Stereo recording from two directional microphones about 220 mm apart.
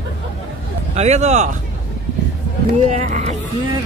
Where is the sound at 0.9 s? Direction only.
30° right (ahead or behind).